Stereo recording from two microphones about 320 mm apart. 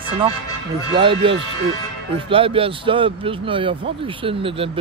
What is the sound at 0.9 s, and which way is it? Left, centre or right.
A man's voice, centre.